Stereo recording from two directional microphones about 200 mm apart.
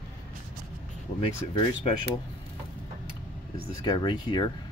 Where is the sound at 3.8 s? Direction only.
20° left (ahead or behind).